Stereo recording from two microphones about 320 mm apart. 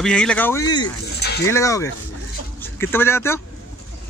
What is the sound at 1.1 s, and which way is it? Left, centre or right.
Speech, left.